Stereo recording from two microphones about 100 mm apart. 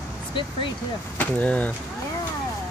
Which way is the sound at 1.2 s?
15° left (ahead or behind).